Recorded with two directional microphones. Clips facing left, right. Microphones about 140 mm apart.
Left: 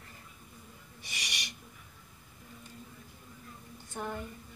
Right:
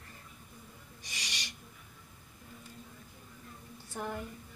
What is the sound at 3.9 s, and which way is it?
Speech, 10° right (ahead or behind).